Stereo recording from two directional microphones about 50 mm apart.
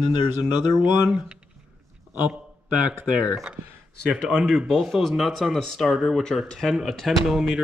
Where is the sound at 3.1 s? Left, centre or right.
Right.